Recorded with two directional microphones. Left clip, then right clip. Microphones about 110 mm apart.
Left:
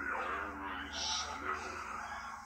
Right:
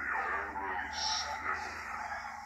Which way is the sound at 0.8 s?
65° right (ahead or behind).